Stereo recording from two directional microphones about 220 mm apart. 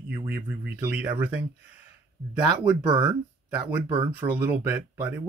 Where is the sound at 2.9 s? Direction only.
20° right (ahead or behind).